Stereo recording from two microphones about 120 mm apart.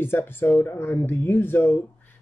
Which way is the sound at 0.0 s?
20° left (ahead or behind).